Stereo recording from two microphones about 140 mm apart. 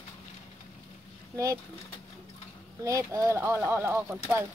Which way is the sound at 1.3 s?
20° right (ahead or behind).